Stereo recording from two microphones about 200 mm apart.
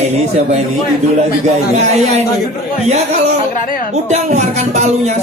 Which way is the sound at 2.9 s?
35° right (ahead or behind).